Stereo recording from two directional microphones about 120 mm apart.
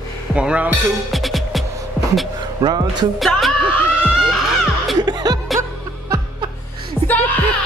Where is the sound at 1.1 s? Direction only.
Centre (ahead or behind).